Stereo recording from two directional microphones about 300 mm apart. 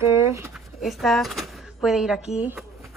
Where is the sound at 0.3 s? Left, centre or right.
Centre.